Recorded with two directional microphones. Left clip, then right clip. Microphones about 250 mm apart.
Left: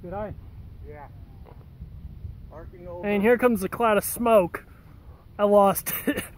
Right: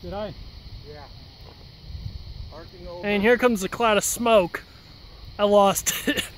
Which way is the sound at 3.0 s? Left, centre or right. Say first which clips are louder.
Right 1 dB; centre.